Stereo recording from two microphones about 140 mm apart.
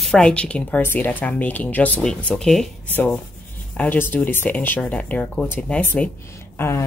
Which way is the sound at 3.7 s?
10° left (ahead or behind).